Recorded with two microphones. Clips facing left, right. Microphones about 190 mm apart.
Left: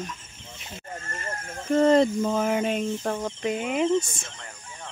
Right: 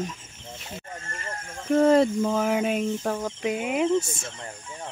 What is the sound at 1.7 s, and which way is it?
Speech, 5° right (ahead or behind).